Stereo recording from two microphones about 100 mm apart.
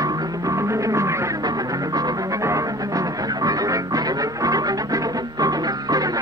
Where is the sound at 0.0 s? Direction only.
35° right (ahead or behind).